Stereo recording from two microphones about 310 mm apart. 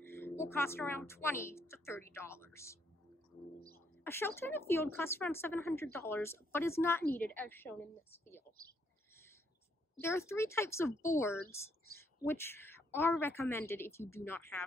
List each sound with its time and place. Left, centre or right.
0.0 s a woman's voice: centre
4.0 s speech: centre
9.9 s speech: centre
11.4 s speech: left
12.2 s speech: centre